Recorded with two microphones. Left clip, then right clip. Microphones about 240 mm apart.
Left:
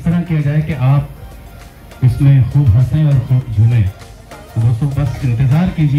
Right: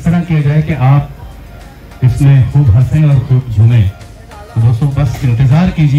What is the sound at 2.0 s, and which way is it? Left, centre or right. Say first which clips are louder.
Speech: right 2 dB; left.